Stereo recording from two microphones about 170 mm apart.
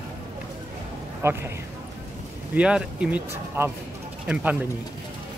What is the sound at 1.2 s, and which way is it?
Speech, 15° right (ahead or behind).